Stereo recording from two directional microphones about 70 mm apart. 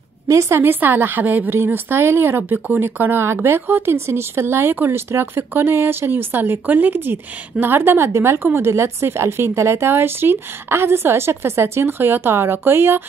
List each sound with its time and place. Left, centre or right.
0.3 s speech: right